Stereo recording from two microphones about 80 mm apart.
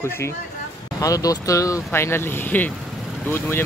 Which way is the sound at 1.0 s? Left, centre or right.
Left.